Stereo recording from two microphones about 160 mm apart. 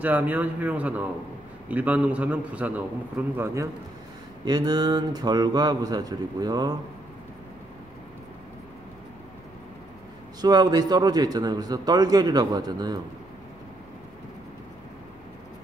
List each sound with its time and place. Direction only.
0.0 s a man's voice: 10° right (ahead or behind)
10.4 s a man's voice: 25° right (ahead or behind)